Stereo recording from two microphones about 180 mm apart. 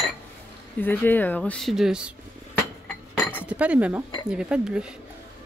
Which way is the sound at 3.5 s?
5° right (ahead or behind).